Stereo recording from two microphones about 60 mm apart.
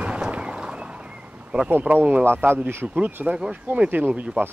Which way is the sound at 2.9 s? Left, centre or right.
Right.